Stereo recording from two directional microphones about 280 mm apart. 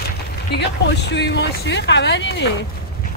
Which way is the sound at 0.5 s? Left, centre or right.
Left.